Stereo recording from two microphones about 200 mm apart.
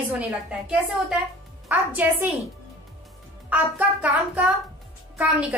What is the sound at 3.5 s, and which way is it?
A woman's voice, 5° right (ahead or behind).